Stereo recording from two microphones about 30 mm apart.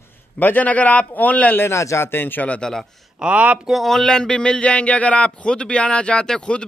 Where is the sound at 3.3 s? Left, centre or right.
Right.